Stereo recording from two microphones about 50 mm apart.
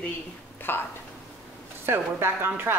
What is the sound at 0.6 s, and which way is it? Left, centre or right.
Speech, left.